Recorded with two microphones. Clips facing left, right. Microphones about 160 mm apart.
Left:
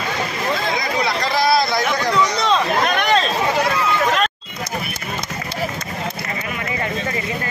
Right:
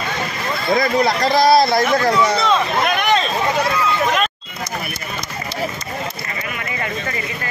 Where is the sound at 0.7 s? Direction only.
45° right (ahead or behind).